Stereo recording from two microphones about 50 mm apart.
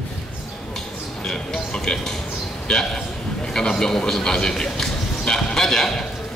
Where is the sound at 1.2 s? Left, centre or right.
Centre.